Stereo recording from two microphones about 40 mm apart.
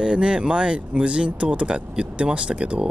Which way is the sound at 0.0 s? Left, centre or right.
Right.